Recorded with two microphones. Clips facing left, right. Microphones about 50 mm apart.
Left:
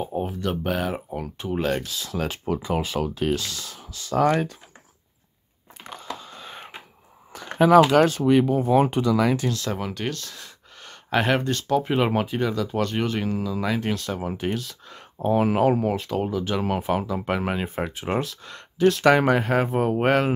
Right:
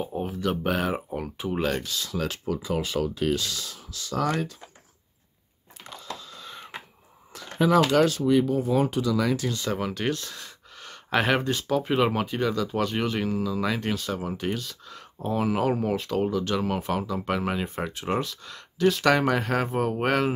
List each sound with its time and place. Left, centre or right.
0.0 s speech: centre
2.1 s speech: centre
2.4 s speech: left
2.8 s speech: centre
4.2 s speech: left
6.1 s whispering: left
7.3 s a sound: left
8.2 s speech: left
9.2 s speech: left
9.5 s speech: centre
15.1 s speech: left
15.9 s speech: centre